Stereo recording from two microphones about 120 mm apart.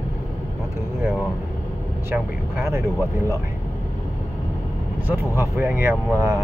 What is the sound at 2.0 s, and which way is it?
Speech, 20° right (ahead or behind).